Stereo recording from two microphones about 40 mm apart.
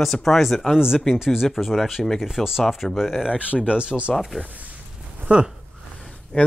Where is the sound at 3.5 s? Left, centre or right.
Right.